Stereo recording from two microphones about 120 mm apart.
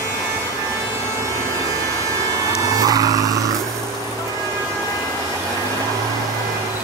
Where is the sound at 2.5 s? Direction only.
30° right (ahead or behind).